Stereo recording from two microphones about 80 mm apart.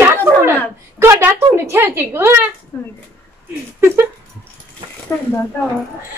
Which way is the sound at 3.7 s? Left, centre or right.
Right.